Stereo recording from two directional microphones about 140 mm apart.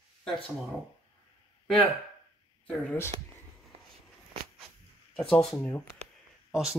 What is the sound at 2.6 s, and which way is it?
Speech, 15° left (ahead or behind).